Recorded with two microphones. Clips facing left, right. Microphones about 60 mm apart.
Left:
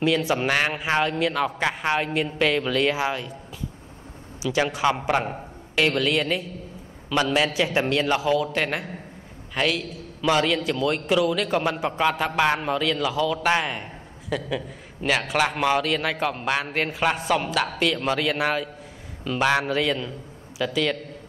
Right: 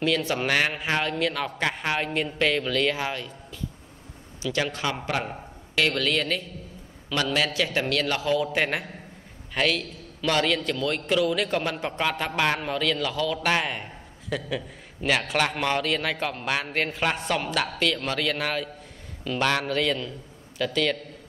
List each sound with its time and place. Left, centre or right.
0.0 s a man's voice: centre
4.4 s a man's voice: centre
8.3 s a man's voice: centre